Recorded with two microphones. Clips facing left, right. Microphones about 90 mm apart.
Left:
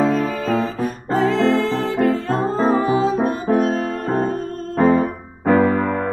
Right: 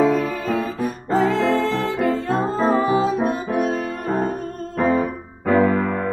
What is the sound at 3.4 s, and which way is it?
Music, 35° left (ahead or behind).